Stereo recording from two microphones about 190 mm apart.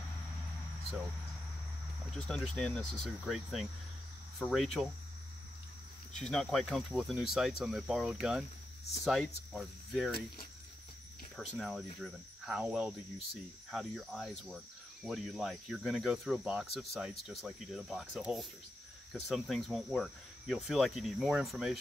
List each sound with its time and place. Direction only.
2.0 s cricket: 5° left (ahead or behind)
6.1 s cricket: 5° left (ahead or behind)
10.1 s speech: 50° left (ahead or behind)
11.5 s cricket: centre (ahead or behind)